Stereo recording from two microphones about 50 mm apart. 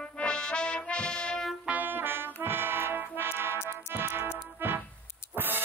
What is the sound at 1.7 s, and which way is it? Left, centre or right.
Music, right.